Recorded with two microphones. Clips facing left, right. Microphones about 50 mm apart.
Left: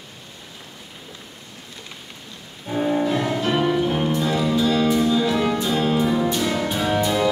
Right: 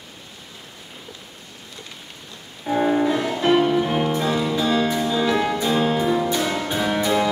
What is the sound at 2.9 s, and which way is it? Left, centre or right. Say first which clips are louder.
Music: even; right.